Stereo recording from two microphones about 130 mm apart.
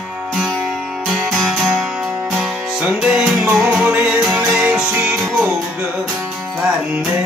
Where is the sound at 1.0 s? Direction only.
Centre (ahead or behind).